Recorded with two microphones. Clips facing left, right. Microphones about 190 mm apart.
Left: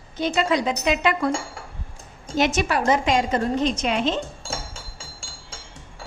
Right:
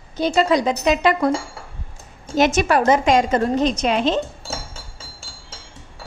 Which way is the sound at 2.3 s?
45° right (ahead or behind).